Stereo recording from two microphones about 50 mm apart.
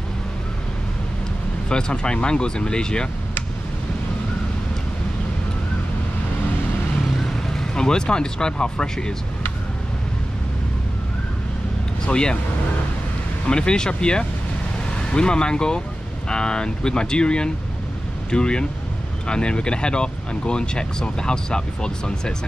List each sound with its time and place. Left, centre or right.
1.7 s speech: centre
7.2 s speech: centre
12.1 s speech: centre
13.5 s speech: centre